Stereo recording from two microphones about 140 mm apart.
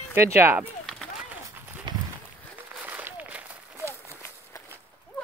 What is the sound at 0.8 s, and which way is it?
Run, centre (ahead or behind).